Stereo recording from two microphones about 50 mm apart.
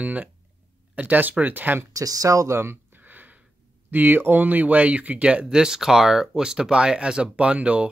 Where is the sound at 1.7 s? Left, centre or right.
Right.